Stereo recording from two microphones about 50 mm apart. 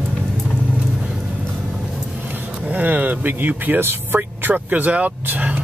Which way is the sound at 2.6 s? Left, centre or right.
Right.